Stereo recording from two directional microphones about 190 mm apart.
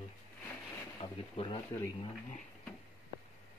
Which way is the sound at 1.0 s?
30° left (ahead or behind).